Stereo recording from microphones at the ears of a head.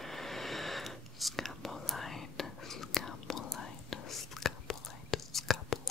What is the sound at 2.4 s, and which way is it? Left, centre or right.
Whispering, left.